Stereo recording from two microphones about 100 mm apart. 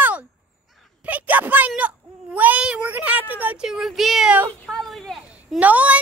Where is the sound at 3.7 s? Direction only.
5° right (ahead or behind).